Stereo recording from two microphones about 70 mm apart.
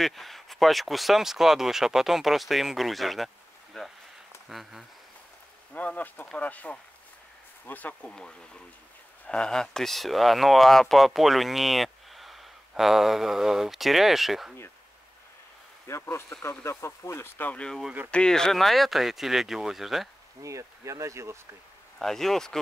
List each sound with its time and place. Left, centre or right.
0.0 s speech: centre
3.8 s a sound: centre
4.5 s speech: centre
5.7 s speech: left
8.1 s speech: centre
15.9 s speech: left
17.5 s speech: centre
20.4 s speech: right
21.9 s speech: centre